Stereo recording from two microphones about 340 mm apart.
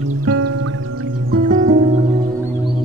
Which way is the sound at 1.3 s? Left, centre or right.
Right.